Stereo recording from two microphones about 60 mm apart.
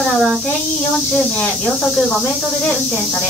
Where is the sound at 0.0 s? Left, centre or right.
Centre.